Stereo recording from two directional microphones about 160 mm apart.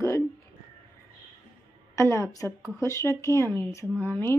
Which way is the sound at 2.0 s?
15° left (ahead or behind).